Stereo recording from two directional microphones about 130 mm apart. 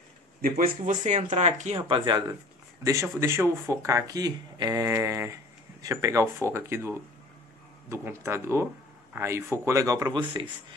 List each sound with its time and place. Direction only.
0.4 s speech: 80° right; by 1.9 s 60° right (ahead or behind)
1.9 s speech: 35° right (ahead or behind)
2.8 s speech: 25° right (ahead or behind)